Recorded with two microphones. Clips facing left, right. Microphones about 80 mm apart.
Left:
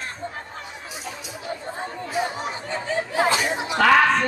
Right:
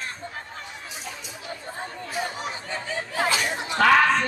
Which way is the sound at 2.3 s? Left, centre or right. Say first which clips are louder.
Left 3 dB; left.